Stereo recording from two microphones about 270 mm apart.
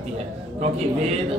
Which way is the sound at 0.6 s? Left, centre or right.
Right.